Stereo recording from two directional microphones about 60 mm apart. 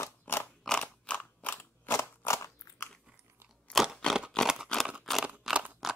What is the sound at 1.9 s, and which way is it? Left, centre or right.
Scissors, left.